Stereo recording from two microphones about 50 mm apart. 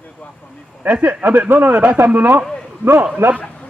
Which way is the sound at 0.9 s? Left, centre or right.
Right.